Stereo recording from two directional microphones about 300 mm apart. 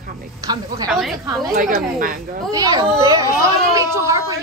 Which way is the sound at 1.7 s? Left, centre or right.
Right.